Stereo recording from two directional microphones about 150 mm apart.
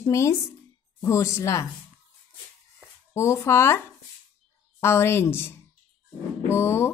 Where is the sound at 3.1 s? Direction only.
20° left (ahead or behind).